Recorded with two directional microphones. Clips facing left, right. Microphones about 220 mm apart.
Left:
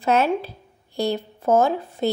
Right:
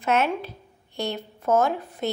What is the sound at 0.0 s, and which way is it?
A woman's voice, 35° left (ahead or behind).